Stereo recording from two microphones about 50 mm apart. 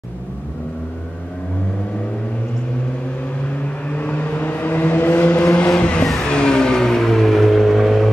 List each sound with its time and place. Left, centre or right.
3.9 s vehicle: left
5.8 s music: left
6.2 s vehicle: centre